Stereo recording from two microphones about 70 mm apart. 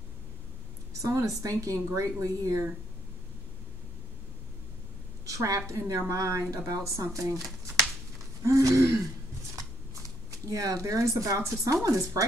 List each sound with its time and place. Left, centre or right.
1.0 s a woman's voice: right
5.2 s a sound: right
5.7 s a woman's voice: right
8.5 s a woman's voice: right